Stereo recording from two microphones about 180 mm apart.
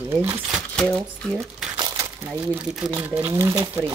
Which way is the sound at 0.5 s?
5° left (ahead or behind).